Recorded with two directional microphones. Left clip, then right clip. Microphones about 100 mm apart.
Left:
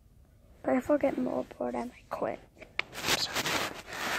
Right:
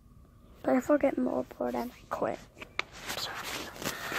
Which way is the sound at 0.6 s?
Centre (ahead or behind).